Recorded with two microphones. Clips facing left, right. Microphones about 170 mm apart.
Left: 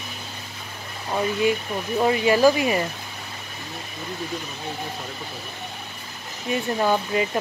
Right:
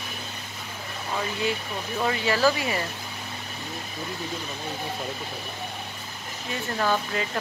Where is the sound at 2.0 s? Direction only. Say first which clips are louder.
Left 6 dB; 20° left (ahead or behind).